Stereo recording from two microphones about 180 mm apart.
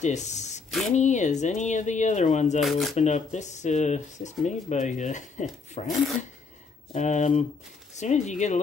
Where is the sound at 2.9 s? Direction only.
40° left (ahead or behind).